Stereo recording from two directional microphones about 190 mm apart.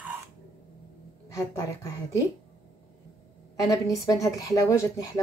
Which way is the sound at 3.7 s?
20° left (ahead or behind).